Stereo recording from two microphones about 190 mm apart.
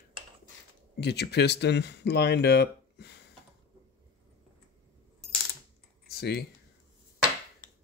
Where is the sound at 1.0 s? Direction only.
60° left (ahead or behind).